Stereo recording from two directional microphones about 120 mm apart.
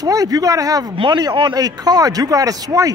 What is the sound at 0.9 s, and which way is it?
Speech, 45° right (ahead or behind).